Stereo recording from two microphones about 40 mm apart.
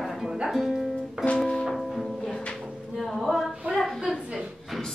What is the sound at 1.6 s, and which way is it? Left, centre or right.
Music, centre.